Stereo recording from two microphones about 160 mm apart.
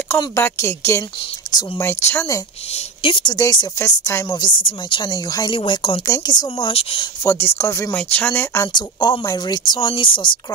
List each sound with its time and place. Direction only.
0.1 s speech: 15° left (ahead or behind)
2.7 s speech: 35° left (ahead or behind)
3.3 s speech: 20° left (ahead or behind)
6.0 s speech: 20° left (ahead or behind)
6.7 s speech: 35° left (ahead or behind)
7.2 s speech: 15° left (ahead or behind)
8.7 s speech: 25° left (ahead or behind)